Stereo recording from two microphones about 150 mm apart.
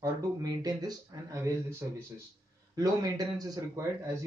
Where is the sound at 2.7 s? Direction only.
25° right (ahead or behind).